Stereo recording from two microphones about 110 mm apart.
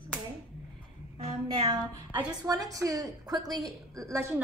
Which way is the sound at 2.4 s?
35° right (ahead or behind).